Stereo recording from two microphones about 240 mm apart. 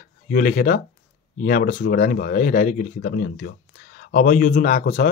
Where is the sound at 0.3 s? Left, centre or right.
Left.